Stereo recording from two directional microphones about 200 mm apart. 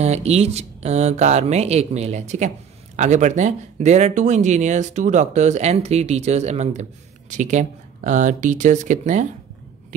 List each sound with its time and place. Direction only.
0.0 s speech: 35° right (ahead or behind)